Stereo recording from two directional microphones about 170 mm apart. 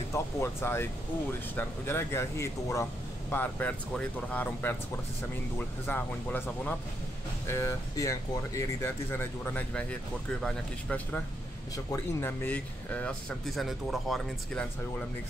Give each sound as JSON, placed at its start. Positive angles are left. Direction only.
{"t": 0.1, "sound": "speech", "side_deg": 15}
{"t": 11.7, "sound": "speech", "side_deg": 15}